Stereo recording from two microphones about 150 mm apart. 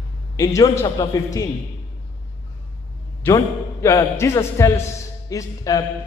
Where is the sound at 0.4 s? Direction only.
20° left (ahead or behind).